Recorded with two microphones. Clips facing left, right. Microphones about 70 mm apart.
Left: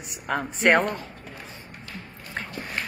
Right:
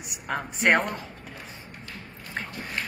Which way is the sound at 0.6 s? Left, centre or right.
Centre.